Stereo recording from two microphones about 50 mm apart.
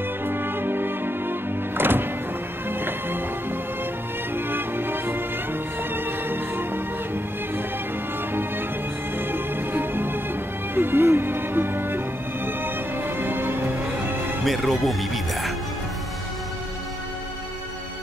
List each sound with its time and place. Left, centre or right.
0.2 s music: right
9.3 s music: right
14.4 s speech: centre